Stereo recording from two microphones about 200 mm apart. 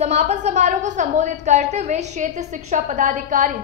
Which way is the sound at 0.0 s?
35° right (ahead or behind).